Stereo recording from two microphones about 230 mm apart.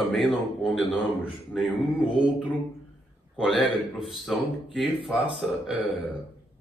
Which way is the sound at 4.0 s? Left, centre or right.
Centre.